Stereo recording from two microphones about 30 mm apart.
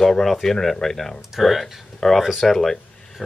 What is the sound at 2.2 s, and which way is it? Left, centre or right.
Speech, centre.